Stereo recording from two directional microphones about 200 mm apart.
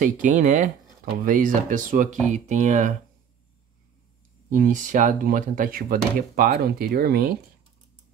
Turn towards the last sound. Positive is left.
turn(degrees=-50)  # may be behind; listen again after turning